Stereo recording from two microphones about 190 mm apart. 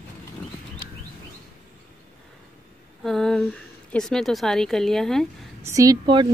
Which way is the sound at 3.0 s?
Centre (ahead or behind).